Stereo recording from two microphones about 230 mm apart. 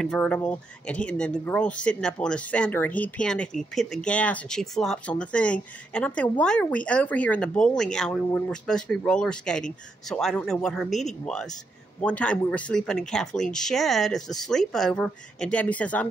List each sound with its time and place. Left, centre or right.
0.0 s speech: centre